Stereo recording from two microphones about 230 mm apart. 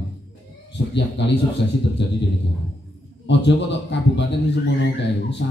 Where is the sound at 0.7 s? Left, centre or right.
Left.